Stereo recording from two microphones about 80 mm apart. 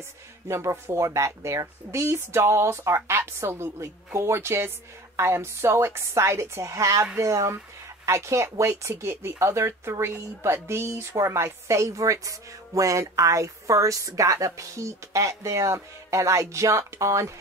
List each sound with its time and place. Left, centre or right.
0.5 s speech: right